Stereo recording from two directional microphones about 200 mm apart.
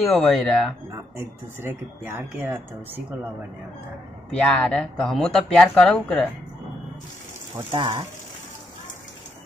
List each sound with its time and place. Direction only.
0.0 s speech: centre (ahead or behind)
0.8 s speech: 15° right (ahead or behind)
4.3 s speech: 5° left (ahead or behind)
7.5 s speech: 20° right (ahead or behind)